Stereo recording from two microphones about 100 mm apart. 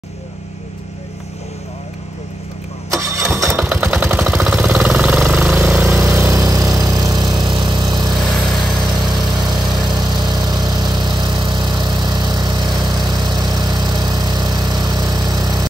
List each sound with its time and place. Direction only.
2.9 s engine starting: 25° right (ahead or behind)
3.5 s vehicle: 15° right (ahead or behind)
4.8 s jackhammer: 15° right (ahead or behind)
5.7 s engine: 20° right (ahead or behind); by 8.2 s 45° right (ahead or behind)
8.8 s lawn mower: 45° right (ahead or behind)